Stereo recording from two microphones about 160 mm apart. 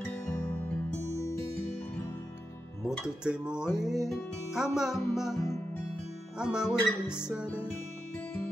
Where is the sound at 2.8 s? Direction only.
5° right (ahead or behind).